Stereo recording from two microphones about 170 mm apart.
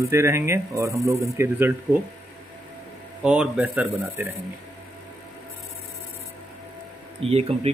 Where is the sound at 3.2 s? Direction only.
5° right (ahead or behind).